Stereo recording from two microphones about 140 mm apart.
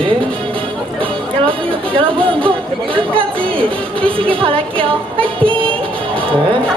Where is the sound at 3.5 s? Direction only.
40° right (ahead or behind).